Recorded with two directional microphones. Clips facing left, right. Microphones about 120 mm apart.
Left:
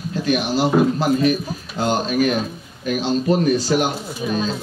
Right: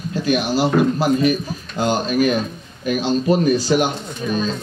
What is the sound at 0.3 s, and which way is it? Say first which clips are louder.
Speech: right 1 dB; centre (ahead or behind).